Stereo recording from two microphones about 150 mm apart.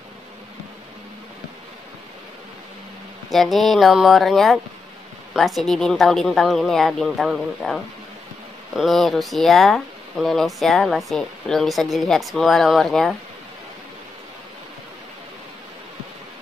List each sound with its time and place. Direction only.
3.3 s speech: centre (ahead or behind)